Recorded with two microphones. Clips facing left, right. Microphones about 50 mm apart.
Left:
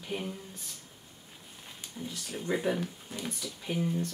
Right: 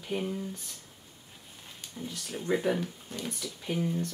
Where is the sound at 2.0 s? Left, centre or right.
Centre.